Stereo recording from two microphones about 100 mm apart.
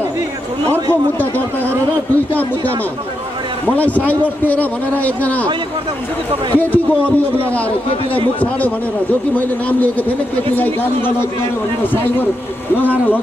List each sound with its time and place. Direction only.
3.6 s speech: 15° left (ahead or behind)
6.5 s speech: 15° left (ahead or behind)
10.5 s a man's voice: 20° left (ahead or behind)